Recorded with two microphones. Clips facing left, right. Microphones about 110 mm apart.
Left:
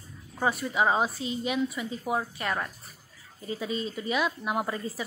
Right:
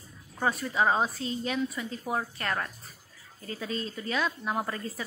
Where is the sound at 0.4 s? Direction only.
5° left (ahead or behind).